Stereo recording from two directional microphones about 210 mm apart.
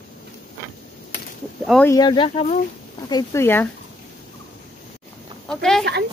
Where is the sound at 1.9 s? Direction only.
20° left (ahead or behind).